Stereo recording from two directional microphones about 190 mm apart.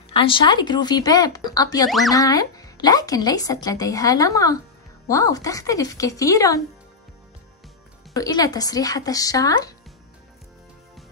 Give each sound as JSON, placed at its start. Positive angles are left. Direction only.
{"t": 0.1, "sound": "speech", "side_deg": 25}
{"t": 1.9, "sound": "speech", "side_deg": 0}
{"t": 2.1, "sound": "speech", "side_deg": 20}
{"t": 8.1, "sound": "speech", "side_deg": 20}